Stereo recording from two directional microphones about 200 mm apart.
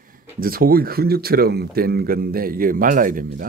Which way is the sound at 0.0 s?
45° right (ahead or behind).